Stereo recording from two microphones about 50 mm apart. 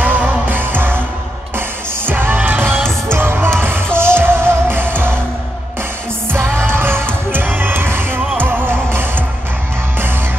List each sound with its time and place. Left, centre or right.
0.0 s music: right
2.0 s music: right
6.3 s music: right